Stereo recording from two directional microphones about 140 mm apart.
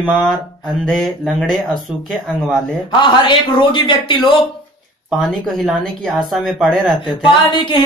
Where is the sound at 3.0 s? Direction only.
35° left (ahead or behind).